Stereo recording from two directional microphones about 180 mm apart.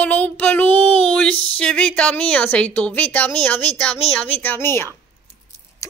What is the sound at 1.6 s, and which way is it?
A woman's voice, 5° left (ahead or behind).